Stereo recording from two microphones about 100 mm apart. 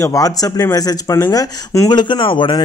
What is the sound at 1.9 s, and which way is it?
Speech, 50° left (ahead or behind).